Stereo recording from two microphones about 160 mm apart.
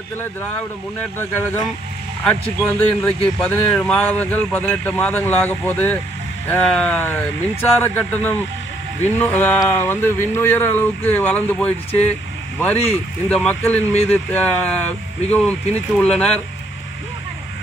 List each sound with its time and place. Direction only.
0.2 s speech: 10° left (ahead or behind)
12.7 s speech: 40° left (ahead or behind)
13.3 s speech: 5° left (ahead or behind)